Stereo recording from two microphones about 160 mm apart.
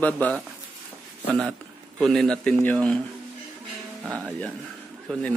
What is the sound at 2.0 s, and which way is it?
Speech, centre (ahead or behind).